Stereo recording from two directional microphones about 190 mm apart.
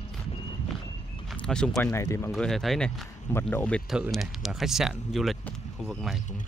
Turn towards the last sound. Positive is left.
turn(degrees=0)  # may be behind; listen again after turning